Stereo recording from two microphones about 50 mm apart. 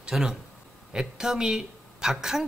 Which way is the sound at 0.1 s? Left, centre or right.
Centre.